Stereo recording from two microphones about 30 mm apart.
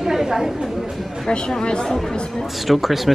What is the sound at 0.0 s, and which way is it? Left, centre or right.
Chatter, centre.